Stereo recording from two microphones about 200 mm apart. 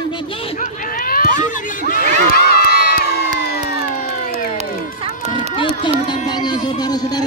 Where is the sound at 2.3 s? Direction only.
50° left (ahead or behind).